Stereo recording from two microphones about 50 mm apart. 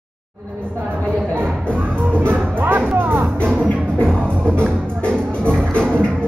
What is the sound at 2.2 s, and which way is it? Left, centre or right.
Music, right.